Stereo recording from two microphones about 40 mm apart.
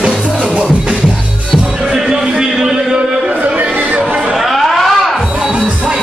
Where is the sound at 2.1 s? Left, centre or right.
Centre.